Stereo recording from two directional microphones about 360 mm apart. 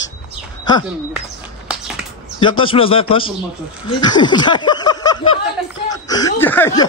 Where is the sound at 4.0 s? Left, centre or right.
Centre.